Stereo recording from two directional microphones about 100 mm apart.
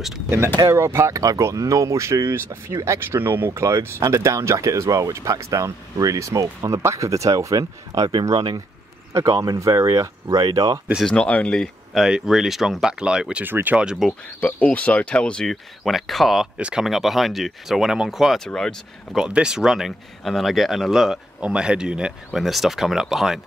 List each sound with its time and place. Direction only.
0.7 s speech: 25° right (ahead or behind)
11.0 s speech: 10° left (ahead or behind); by 13.9 s 15° right (ahead or behind)
14.4 s speech: 15° left (ahead or behind)
19.1 s speech: 10° right (ahead or behind)